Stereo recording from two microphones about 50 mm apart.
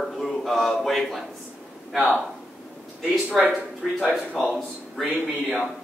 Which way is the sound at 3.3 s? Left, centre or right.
Centre.